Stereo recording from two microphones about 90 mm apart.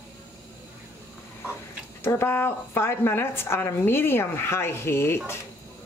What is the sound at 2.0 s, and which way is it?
Speech, 25° left (ahead or behind).